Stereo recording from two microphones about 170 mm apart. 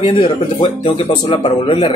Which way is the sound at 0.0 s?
30° left (ahead or behind).